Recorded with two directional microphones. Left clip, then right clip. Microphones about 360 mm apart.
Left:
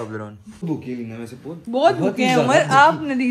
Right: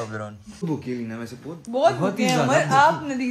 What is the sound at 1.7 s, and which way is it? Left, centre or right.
A woman's voice, left.